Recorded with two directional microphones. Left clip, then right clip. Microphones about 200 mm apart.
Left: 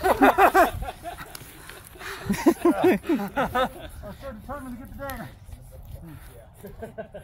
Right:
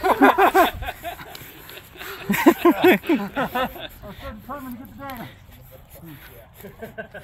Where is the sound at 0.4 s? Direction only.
30° left (ahead or behind).